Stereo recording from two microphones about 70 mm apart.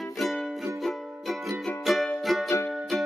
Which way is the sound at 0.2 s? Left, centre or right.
Centre.